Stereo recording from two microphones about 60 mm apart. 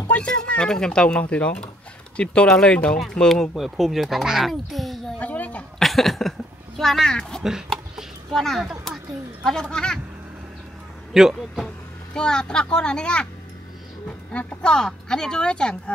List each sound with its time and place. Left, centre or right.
0.1 s speech: centre
5.2 s a sound: left
5.8 s a sound: centre
6.8 s speech: centre
11.1 s speech: centre
11.5 s speech: centre